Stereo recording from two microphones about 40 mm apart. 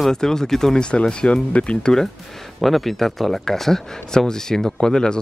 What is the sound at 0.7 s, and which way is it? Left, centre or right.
Speech, left.